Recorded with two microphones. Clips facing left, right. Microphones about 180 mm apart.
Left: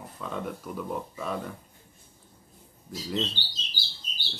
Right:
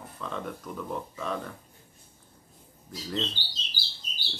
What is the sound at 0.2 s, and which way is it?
Speech, 5° left (ahead or behind).